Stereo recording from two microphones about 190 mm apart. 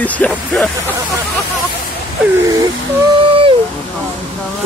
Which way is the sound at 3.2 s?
25° right (ahead or behind).